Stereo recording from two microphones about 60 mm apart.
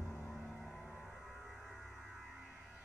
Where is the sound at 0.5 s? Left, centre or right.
Centre.